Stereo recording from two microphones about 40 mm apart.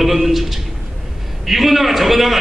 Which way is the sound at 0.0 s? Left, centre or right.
Centre.